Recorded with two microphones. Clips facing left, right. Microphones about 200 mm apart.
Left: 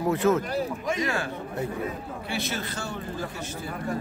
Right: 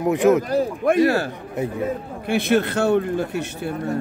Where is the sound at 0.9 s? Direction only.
60° right (ahead or behind).